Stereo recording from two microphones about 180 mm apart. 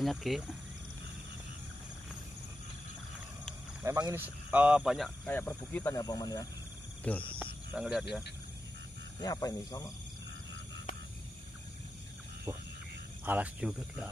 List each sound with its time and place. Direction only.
0.0 s speech: centre (ahead or behind)
3.8 s speech: 15° right (ahead or behind); by 6.4 s 20° left (ahead or behind)
7.1 s speech: 5° left (ahead or behind)
7.7 s speech: 5° right (ahead or behind)
9.2 s speech: 20° left (ahead or behind)
13.2 s speech: 10° right (ahead or behind)